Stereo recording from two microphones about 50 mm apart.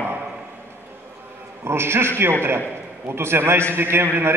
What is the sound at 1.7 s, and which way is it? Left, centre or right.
A man's voice, right.